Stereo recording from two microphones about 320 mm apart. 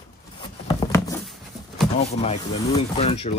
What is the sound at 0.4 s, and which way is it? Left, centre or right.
Patter, centre.